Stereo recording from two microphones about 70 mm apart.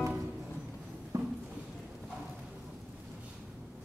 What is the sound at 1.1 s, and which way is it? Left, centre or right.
Clip-clop, right.